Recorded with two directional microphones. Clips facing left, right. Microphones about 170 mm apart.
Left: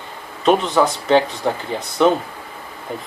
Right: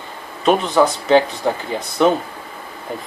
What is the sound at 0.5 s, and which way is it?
Speech, 5° right (ahead or behind).